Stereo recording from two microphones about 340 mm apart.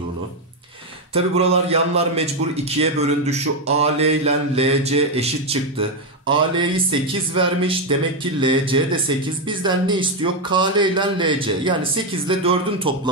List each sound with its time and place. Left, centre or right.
1.1 s mantra: centre